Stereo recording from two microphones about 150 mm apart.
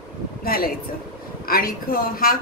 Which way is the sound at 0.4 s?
85° left.